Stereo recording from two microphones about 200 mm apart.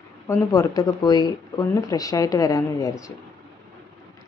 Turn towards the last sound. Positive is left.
turn(degrees=15)  # may be behind; listen again after turning